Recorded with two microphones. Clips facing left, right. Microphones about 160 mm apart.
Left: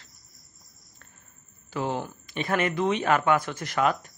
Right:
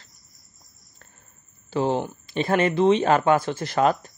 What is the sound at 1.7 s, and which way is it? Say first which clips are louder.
A man's voice: right 6 dB; 30° right (ahead or behind).